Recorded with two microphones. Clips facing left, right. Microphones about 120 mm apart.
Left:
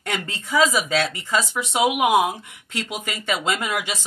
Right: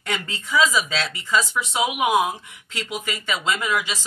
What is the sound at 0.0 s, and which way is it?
A woman's voice, 50° left (ahead or behind).